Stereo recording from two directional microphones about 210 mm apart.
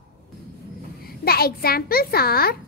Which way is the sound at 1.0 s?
45° left (ahead or behind).